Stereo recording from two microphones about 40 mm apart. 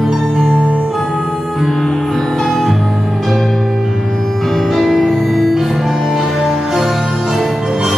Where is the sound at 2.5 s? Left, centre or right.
Centre.